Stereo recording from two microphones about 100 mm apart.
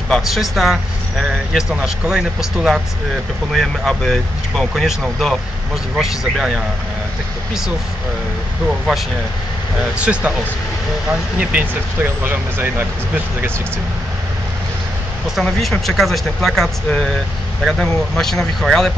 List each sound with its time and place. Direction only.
0.1 s speech: centre (ahead or behind)
5.9 s speech: 5° right (ahead or behind)
8.6 s speech: 5° right (ahead or behind); by 13.5 s 20° right (ahead or behind)
15.4 s speech: 5° left (ahead or behind)